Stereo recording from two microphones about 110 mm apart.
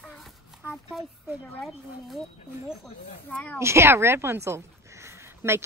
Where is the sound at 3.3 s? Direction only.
15° left (ahead or behind).